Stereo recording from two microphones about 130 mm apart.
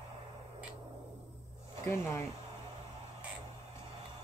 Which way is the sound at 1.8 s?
20° left (ahead or behind).